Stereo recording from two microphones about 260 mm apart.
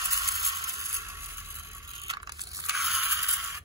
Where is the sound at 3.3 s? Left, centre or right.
Centre.